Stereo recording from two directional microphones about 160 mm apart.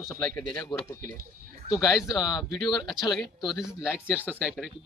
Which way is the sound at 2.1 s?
25° left (ahead or behind).